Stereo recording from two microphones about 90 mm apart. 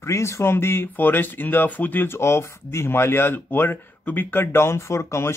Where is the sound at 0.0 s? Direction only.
30° left (ahead or behind).